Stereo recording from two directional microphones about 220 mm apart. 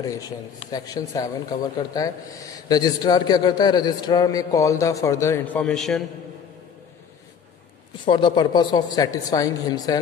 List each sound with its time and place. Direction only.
0.0 s speech: 15° left (ahead or behind)
8.0 s speech: 20° left (ahead or behind)